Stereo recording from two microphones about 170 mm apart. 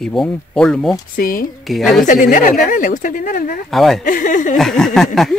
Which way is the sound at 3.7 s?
Centre (ahead or behind).